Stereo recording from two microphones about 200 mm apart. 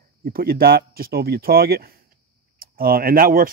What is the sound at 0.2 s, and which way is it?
Speech, 45° right (ahead or behind).